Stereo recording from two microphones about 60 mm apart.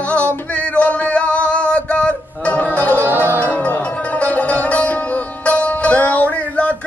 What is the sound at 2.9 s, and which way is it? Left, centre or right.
Music, right.